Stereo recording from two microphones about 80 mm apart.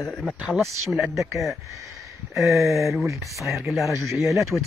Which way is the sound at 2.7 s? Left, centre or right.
Centre.